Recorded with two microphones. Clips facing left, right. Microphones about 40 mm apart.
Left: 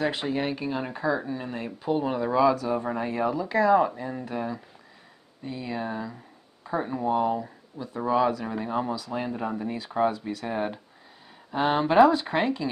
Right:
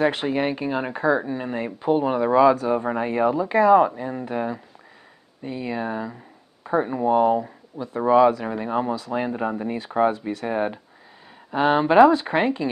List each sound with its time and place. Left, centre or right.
0.0 s speech: right
8.5 s speech: centre